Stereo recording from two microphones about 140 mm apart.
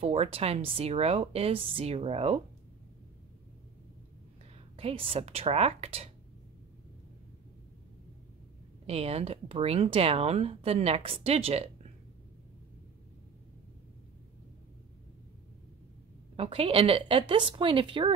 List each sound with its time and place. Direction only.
0.0 s speech: 45° right (ahead or behind)
4.7 s speech: 40° right (ahead or behind)
8.8 s speech: 45° right (ahead or behind)
16.3 s a woman's voice: 45° right (ahead or behind)